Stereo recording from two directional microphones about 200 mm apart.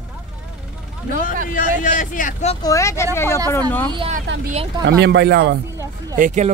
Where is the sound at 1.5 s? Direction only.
40° left (ahead or behind).